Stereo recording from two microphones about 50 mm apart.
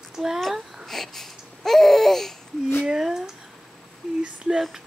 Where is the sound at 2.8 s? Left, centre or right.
Centre.